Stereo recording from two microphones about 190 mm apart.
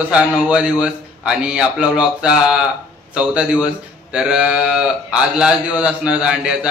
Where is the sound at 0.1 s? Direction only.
5° right (ahead or behind).